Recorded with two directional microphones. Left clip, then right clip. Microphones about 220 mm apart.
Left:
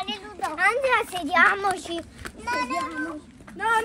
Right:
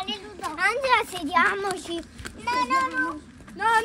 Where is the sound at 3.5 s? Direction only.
30° right (ahead or behind).